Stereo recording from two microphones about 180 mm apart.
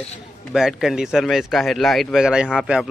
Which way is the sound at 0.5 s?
5° right (ahead or behind).